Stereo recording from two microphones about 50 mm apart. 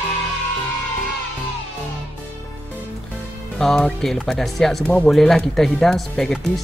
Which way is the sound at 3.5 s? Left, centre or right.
Centre.